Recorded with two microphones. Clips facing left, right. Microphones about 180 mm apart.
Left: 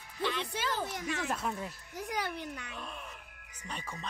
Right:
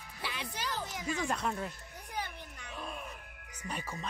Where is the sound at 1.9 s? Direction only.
90° left.